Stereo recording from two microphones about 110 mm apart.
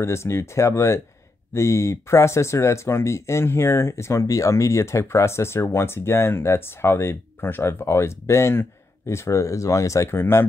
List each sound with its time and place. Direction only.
0.0 s speech: 25° left (ahead or behind)